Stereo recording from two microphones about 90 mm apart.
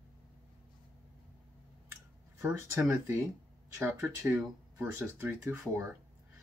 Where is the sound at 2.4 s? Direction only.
30° right (ahead or behind).